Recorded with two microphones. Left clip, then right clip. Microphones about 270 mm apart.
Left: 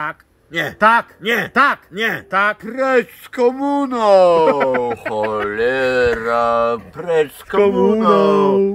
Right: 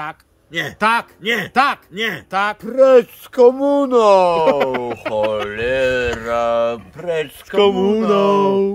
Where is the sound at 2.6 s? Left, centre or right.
Right.